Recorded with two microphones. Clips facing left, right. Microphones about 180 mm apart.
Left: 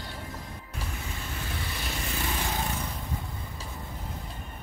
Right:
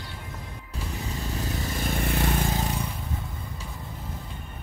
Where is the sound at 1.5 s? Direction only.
45° right (ahead or behind).